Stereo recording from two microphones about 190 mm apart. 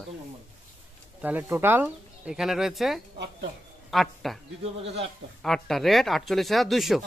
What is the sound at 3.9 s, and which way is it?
Speech, centre (ahead or behind).